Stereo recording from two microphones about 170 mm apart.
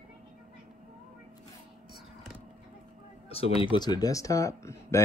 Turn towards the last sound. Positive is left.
turn(degrees=15)  # may be behind; listen again after turning